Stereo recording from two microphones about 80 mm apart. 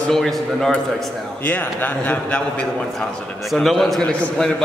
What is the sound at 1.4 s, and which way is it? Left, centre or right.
Speech, left.